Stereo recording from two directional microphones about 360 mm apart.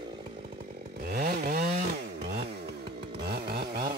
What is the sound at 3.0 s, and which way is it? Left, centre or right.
Chainsaw, right.